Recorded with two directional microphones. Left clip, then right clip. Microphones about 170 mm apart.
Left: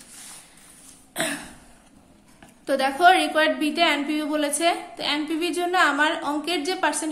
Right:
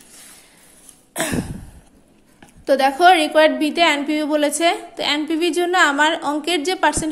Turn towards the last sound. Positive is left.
turn(degrees=-40)  # may be behind; listen again after turning